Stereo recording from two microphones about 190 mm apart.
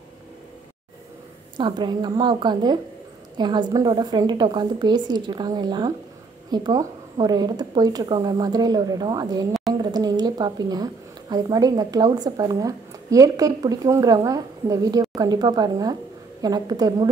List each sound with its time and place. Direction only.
1.6 s a woman's voice: 25° right (ahead or behind)